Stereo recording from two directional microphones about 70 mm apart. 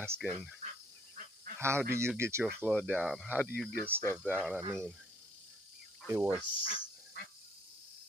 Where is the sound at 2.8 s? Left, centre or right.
Centre.